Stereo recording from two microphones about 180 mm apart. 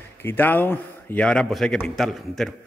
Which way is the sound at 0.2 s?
10° left (ahead or behind).